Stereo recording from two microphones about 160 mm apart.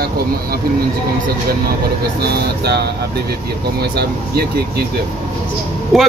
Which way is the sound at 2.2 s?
80° right.